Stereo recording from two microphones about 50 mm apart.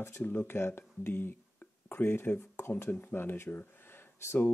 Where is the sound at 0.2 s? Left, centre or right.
Left.